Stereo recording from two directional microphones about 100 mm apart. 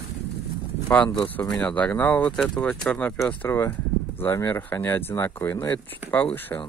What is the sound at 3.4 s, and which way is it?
Speech, 25° left (ahead or behind).